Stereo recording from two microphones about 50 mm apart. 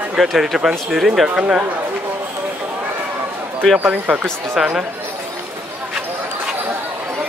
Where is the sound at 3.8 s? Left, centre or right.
Right.